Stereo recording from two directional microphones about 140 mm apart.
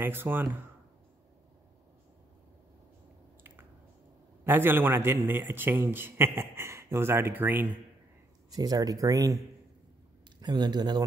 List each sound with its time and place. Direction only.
0.0 s a man's voice: 15° right (ahead or behind)
4.5 s a man's voice: 15° right (ahead or behind)
8.5 s speech: 25° right (ahead or behind)
10.4 s speech: 30° right (ahead or behind)